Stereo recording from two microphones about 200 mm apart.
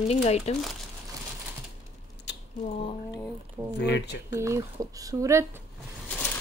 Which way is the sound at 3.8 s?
60° left (ahead or behind).